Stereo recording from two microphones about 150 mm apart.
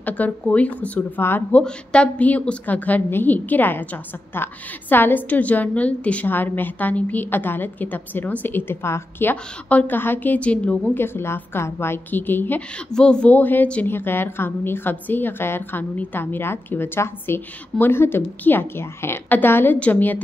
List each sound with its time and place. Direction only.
0.0 s speech: 10° left (ahead or behind)